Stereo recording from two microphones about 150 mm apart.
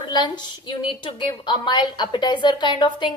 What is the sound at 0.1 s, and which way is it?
A woman's voice, 30° left (ahead or behind).